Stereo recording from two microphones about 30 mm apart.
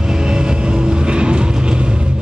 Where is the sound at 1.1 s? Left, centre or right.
Right.